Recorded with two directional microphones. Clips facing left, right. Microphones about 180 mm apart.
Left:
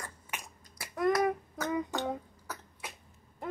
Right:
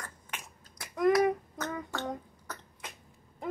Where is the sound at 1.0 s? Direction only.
Centre (ahead or behind).